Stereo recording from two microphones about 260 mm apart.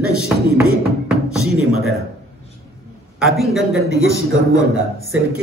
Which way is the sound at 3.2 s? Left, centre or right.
Centre.